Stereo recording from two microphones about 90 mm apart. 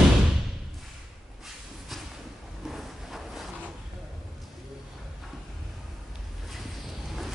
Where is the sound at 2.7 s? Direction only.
Centre (ahead or behind).